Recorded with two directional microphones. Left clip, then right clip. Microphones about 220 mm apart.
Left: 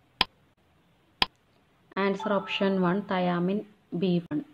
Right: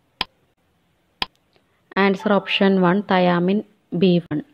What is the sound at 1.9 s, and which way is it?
Speech, 30° right (ahead or behind).